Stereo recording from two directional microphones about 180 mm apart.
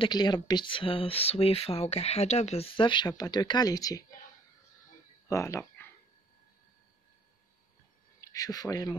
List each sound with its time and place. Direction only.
0.0 s speech: 25° left (ahead or behind)
5.3 s speech: 15° left (ahead or behind)
8.2 s speech: 20° left (ahead or behind)